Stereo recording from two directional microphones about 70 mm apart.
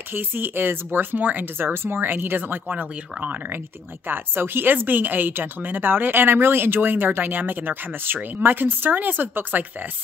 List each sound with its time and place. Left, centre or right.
0.1 s speech: right